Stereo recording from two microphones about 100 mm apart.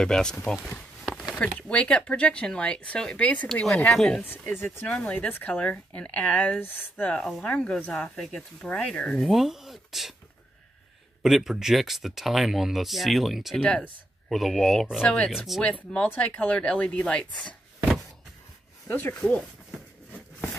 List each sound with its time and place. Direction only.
0.0 s speech: 5° left (ahead or behind)
0.7 s a sound: 5° left (ahead or behind)
1.3 s speech: 10° left (ahead or behind)
4.2 s speech: 20° left (ahead or behind)
7.2 s speech: centre (ahead or behind)
7.4 s speech: 10° left (ahead or behind)
9.3 s speech: centre (ahead or behind)
11.2 s speech: 5° right (ahead or behind)
13.6 s speech: 10° left (ahead or behind)
15.6 s speech: 15° left (ahead or behind)
18.9 s speech: 20° left (ahead or behind)